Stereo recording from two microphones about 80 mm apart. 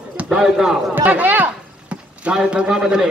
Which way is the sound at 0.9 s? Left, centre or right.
Right.